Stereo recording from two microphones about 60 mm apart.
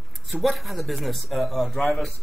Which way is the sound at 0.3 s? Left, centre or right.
Centre.